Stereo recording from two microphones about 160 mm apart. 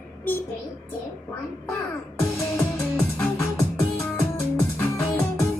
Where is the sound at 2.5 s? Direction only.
15° left (ahead or behind).